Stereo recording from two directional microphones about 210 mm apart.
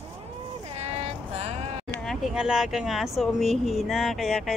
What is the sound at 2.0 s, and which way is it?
Speech, centre (ahead or behind).